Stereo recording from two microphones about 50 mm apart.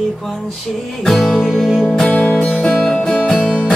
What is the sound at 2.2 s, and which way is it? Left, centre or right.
Music, left.